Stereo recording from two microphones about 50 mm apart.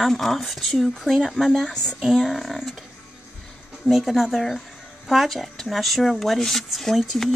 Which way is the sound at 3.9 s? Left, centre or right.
Centre.